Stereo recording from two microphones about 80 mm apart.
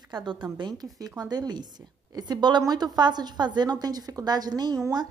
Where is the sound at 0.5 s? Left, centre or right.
Right.